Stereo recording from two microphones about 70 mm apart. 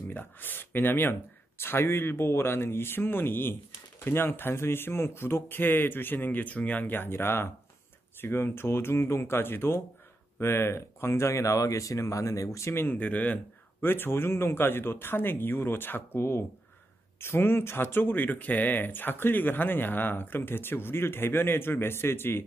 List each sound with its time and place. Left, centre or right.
0.1 s speech: left
12.8 s speech: left